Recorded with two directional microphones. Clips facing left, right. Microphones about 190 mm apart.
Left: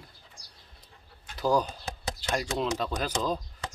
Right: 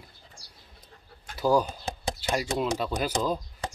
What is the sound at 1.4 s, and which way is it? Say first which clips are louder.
Speech: right 2 dB; 10° right (ahead or behind).